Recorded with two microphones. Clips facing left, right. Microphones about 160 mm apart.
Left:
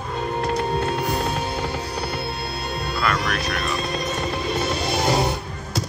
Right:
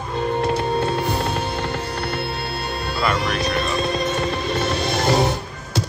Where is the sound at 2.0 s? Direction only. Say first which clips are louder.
Right 2 dB; 60° right (ahead or behind).